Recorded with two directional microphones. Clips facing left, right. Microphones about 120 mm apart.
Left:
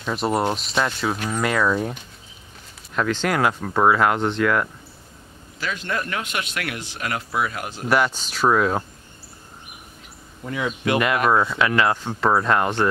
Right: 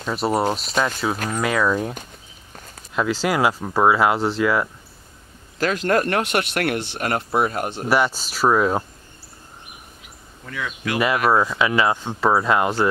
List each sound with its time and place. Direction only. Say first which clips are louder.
0.0 s speech: right 1 dB; centre (ahead or behind)
5.9 s speech: right 9 dB; 60° right (ahead or behind); by 7.7 s 40° right (ahead or behind)
7.9 s speech: even; 5° right (ahead or behind)
10.4 s speech: left 4 dB; 25° left (ahead or behind)
11.2 s speech: right 1 dB; 10° right (ahead or behind)